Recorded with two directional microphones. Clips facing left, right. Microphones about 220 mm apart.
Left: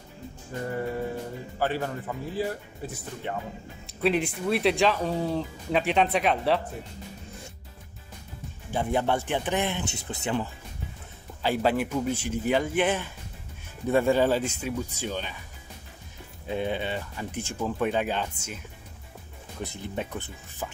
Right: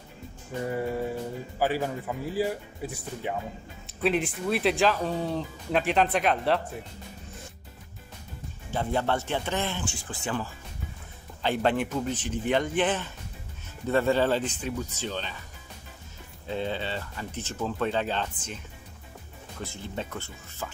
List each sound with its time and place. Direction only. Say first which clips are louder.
1.6 s speech: right 1 dB; 10° right (ahead or behind)
8.7 s speech: left 2 dB; 15° left (ahead or behind)
11.4 s speech: left 1 dB; 5° left (ahead or behind)
16.4 s speech: left 2 dB; 15° left (ahead or behind)
19.6 s speech: left 2 dB; 15° left (ahead or behind)